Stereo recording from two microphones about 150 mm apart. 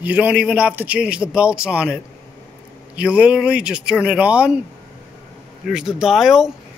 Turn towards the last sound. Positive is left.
turn(degrees=-5)  # may be behind; listen again after turning